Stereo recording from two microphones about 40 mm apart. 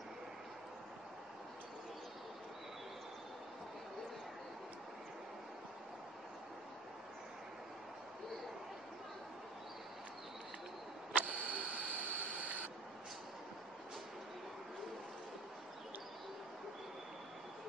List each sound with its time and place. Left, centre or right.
11.1 s camera: right